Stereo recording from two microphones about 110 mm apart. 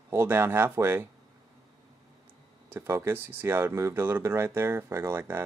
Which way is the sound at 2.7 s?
20° right (ahead or behind).